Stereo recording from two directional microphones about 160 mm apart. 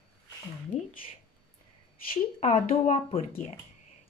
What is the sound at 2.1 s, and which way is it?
Speech, 40° left (ahead or behind).